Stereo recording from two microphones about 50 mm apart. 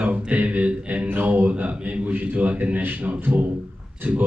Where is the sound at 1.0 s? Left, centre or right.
Right.